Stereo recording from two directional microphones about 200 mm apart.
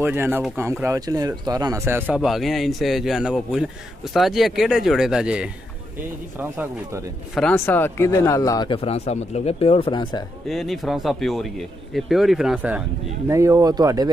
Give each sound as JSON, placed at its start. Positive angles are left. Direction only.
{"t": 0.0, "sound": "speech", "side_deg": -10}
{"t": 7.3, "sound": "speech", "side_deg": 10}
{"t": 10.5, "sound": "speech", "side_deg": 0}
{"t": 13.3, "sound": "speech", "side_deg": -15}